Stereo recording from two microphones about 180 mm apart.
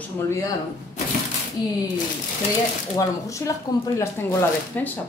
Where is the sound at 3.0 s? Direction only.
15° left (ahead or behind).